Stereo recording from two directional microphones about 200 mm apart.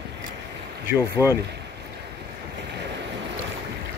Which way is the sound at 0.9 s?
10° right (ahead or behind).